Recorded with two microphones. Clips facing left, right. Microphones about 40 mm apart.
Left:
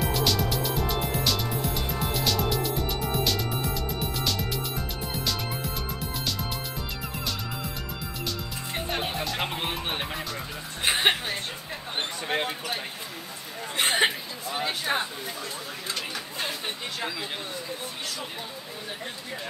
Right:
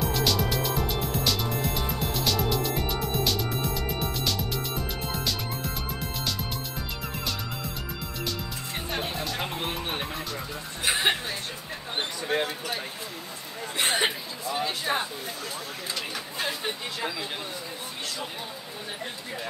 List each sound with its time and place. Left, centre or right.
0.0 s music: centre
8.9 s music: centre
9.4 s music: left
10.8 s music: left
12.3 s speech: left
13.7 s a sound: left
14.9 s a sound: centre
15.9 s chatter: centre